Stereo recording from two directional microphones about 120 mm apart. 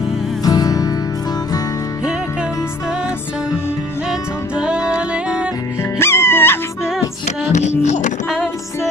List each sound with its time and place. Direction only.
0.4 s music: 30° left (ahead or behind)
4.6 s music: 10° right (ahead or behind)
5.9 s music: 20° left (ahead or behind)
7.2 s music: 70° left (ahead or behind)
7.8 s music: 85° left